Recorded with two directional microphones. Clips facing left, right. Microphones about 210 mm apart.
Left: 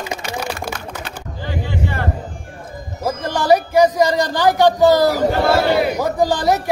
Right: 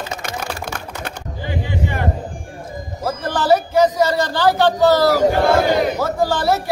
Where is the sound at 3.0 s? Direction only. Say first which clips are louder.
Left 1 dB; 15° left (ahead or behind).